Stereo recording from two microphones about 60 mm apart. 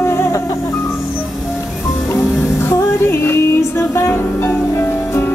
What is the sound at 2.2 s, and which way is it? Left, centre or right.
Music, left.